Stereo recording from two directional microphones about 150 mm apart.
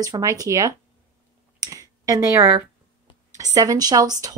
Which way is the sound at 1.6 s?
25° right (ahead or behind).